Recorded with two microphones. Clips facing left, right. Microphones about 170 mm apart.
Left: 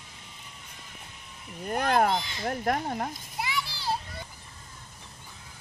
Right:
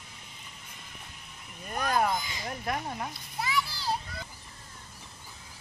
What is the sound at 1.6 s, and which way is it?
Speech, 65° left (ahead or behind).